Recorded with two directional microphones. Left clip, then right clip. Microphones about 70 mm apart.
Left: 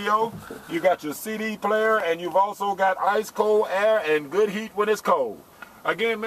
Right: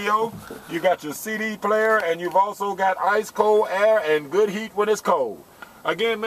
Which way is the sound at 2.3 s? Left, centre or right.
Centre.